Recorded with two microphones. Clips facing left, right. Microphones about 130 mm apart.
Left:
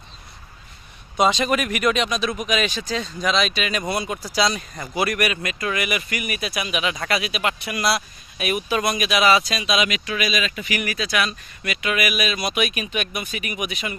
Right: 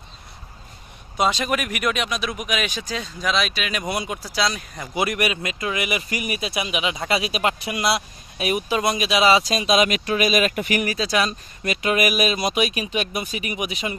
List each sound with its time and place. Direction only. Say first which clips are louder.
1.1 s speech: left 2 dB; 5° right (ahead or behind)
4.4 s speech: left 3 dB; centre (ahead or behind)
4.9 s speech: even; 20° right (ahead or behind); by 10.8 s 50° right (ahead or behind)
10.8 s speech: right 1 dB; 35° right (ahead or behind)